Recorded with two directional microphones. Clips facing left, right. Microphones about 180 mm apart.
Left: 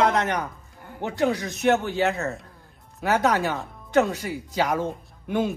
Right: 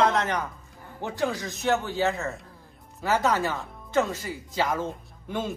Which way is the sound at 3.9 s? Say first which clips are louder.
Left 4 dB; 65° left (ahead or behind).